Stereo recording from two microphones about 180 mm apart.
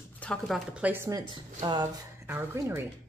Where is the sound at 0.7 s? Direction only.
10° right (ahead or behind).